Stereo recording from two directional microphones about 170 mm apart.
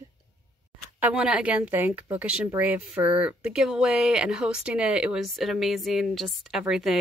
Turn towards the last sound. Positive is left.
turn(degrees=-5)  # may be behind; listen again after turning